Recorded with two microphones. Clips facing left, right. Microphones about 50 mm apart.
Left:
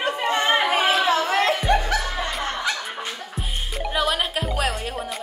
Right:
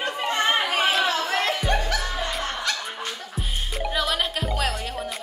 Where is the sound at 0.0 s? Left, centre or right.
Centre.